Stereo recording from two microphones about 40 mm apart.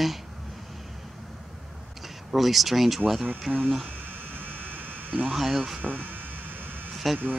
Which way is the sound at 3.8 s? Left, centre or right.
Right.